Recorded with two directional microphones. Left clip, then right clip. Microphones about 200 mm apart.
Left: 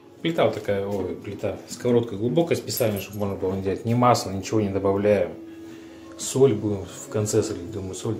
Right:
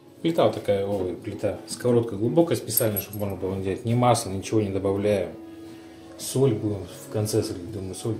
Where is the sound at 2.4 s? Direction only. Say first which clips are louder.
Even; centre (ahead or behind).